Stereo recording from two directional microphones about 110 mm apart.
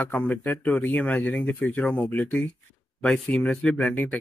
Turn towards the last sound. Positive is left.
turn(degrees=15)  # may be behind; listen again after turning